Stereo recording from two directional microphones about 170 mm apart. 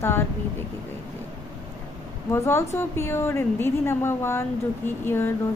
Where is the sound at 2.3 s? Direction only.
15° left (ahead or behind).